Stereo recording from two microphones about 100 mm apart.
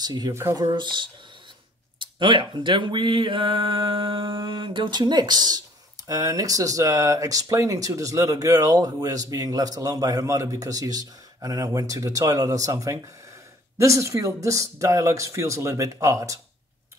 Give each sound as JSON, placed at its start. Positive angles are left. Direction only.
{"t": 0.0, "sound": "speech", "side_deg": -40}
{"t": 6.0, "sound": "speech", "side_deg": -35}